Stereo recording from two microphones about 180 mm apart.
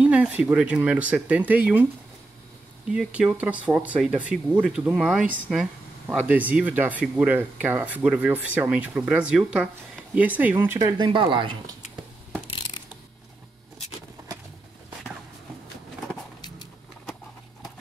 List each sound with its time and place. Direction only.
0.0 s speech: 5° right (ahead or behind)
2.9 s speech: 5° right (ahead or behind); by 11.5 s 30° right (ahead or behind)
12.4 s ratchet: 30° left (ahead or behind)